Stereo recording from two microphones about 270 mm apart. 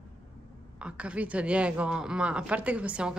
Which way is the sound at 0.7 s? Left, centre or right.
Centre.